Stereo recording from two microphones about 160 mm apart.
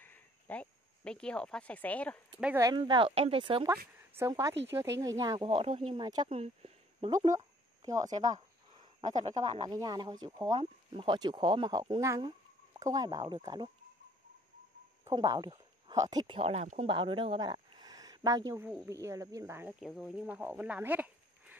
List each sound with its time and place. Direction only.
0.0 s speech: 10° left (ahead or behind)
2.4 s speech: 15° right (ahead or behind)
2.7 s speech: 30° right (ahead or behind)
4.2 s speech: 20° right (ahead or behind)
6.2 s speech: 40° right (ahead or behind)
7.3 s a sound: 20° right (ahead or behind)
9.0 s speech: 50° right (ahead or behind)
9.6 s speech: 25° right (ahead or behind)
15.0 s speech: 25° right (ahead or behind)
16.3 s speech: 40° right (ahead or behind); by 20.2 s centre (ahead or behind)
20.2 s speech: 10° right (ahead or behind)